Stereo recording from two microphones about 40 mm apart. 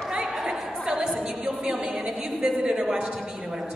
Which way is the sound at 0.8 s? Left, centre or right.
Centre.